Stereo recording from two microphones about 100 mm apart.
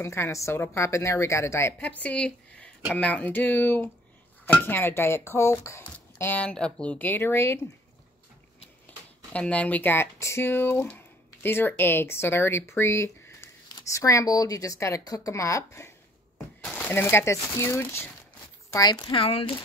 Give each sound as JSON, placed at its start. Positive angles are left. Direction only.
{"t": 0.0, "sound": "speech", "side_deg": 25}
{"t": 1.8, "sound": "speech", "side_deg": 15}
{"t": 6.4, "sound": "speech", "side_deg": 10}
{"t": 9.3, "sound": "speech", "side_deg": 15}
{"t": 16.6, "sound": "speech", "side_deg": 15}
{"t": 18.7, "sound": "speech", "side_deg": 40}
{"t": 19.1, "sound": "speech", "side_deg": 70}